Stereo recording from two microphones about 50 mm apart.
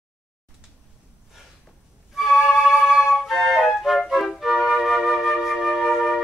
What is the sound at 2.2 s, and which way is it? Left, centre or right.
Flute, centre.